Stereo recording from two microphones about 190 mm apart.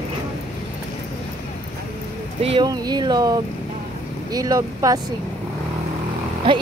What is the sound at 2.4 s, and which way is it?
Speech, 30° right (ahead or behind).